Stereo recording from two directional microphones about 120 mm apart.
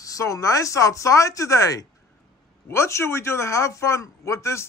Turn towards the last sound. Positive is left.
turn(degrees=25)  # may be behind; listen again after turning